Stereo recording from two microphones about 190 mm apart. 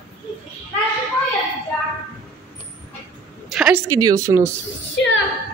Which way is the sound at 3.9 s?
20° right (ahead or behind).